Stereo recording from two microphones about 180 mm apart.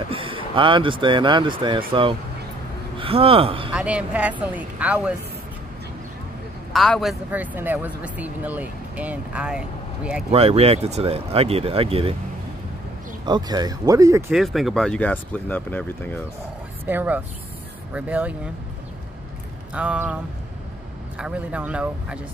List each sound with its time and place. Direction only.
0.1 s speech: 30° right (ahead or behind)
3.7 s speech: 5° right (ahead or behind)
6.7 s speech: centre (ahead or behind)
10.3 s speech: 35° right (ahead or behind)
13.2 s speech: 25° right (ahead or behind)
14.3 s speech: centre (ahead or behind)
16.8 s speech: 10° right (ahead or behind)
19.7 s speech: 5° right (ahead or behind)
21.2 s speech: 5° right (ahead or behind)